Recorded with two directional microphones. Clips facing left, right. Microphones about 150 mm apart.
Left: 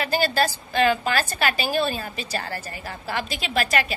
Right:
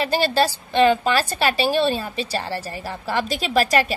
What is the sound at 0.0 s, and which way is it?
A woman's voice, 30° right (ahead or behind).